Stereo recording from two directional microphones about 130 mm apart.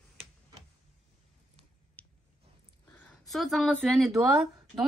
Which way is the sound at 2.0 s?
10° left (ahead or behind).